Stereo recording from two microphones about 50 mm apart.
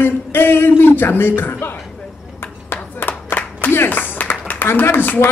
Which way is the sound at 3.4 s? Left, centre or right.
Left.